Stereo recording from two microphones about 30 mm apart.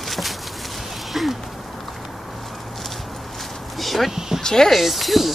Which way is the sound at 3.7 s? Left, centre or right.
Centre.